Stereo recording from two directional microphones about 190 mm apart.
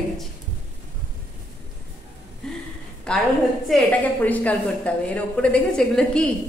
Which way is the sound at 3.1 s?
5° left (ahead or behind).